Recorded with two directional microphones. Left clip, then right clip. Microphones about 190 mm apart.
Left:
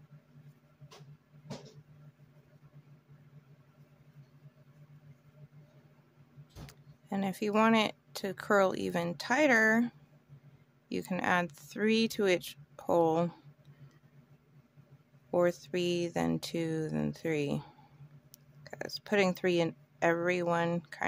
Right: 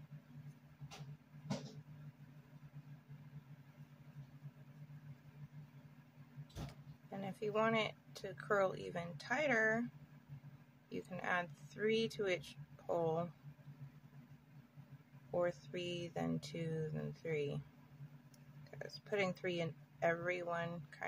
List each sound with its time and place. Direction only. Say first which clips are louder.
7.1 s speech: left 9 dB; 55° left (ahead or behind)
10.9 s speech: left 10 dB; 55° left (ahead or behind)
15.3 s speech: left 10 dB; 55° left (ahead or behind)
18.6 s a woman's voice: left 10 dB; 55° left (ahead or behind)